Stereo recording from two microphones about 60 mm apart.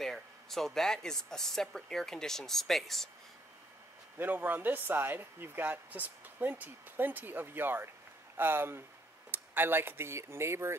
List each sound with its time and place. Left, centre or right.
0.0 s speech: centre
4.2 s speech: right